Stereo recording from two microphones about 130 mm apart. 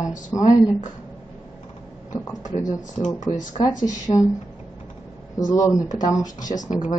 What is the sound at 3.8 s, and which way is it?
Speech, 25° left (ahead or behind).